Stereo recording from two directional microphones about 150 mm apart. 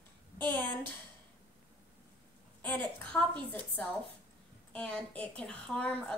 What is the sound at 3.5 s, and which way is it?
A woman's voice, 10° left (ahead or behind).